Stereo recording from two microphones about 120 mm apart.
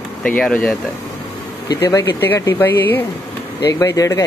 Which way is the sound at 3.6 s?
30° left (ahead or behind).